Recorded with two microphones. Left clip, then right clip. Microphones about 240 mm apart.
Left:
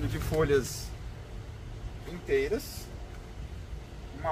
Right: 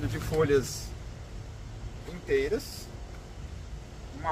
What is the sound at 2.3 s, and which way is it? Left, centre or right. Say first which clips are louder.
Speech: right 1 dB; centre.